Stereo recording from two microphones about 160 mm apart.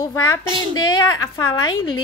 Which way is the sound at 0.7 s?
25° left (ahead or behind).